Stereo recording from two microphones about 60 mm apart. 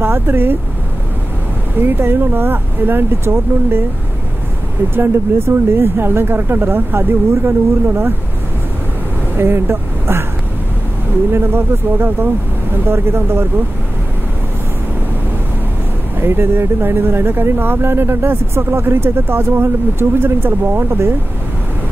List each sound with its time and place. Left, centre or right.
0.0 s speech: right
1.8 s speech: right
4.9 s speech: right
9.4 s speech: right
11.3 s speech: right
16.2 s speech: right